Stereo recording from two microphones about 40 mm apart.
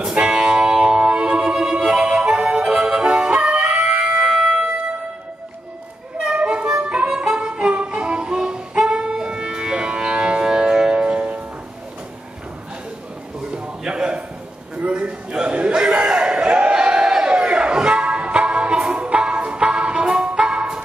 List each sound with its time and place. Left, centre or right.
0.0 s music: centre
1.4 s music: centre; by 4.1 s right
4.1 s music: centre
6.2 s harmonica: right
7.3 s music: right
10.9 s music: right
13.6 s a sound: right
16.7 s a sound: centre
17.5 s music: right